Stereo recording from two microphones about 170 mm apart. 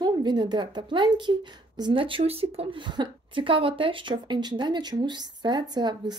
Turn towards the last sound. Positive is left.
turn(degrees=-25)  # may be behind; listen again after turning